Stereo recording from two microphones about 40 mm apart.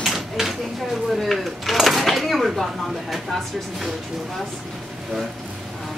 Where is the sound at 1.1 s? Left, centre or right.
Centre.